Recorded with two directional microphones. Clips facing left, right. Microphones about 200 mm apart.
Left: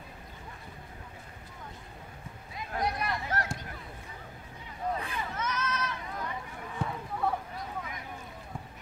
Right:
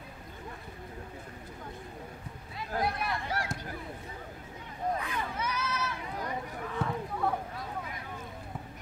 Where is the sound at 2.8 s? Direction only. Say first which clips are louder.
Left 1 dB; 5° right (ahead or behind).